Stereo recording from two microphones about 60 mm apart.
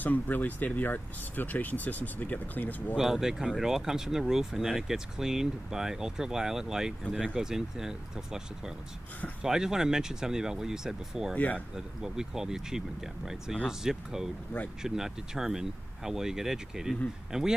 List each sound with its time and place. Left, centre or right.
0.0 s speech: left
3.0 s speech: centre
11.3 s speech: left
11.7 s speech: centre